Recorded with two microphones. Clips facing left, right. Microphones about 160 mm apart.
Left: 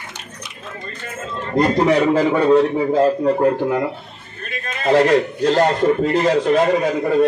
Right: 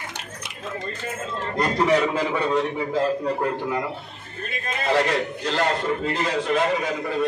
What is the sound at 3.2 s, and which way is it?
Speech, 40° left (ahead or behind).